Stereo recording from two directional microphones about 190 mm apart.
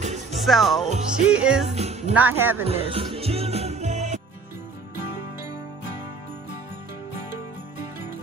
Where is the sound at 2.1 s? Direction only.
10° right (ahead or behind).